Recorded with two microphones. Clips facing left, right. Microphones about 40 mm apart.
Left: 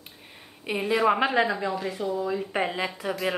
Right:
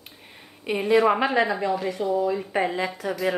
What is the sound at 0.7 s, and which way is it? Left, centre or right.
Speech, centre.